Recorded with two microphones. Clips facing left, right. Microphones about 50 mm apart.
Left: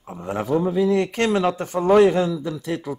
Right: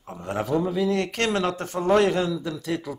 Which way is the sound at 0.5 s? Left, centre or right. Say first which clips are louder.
Left 5 dB; centre.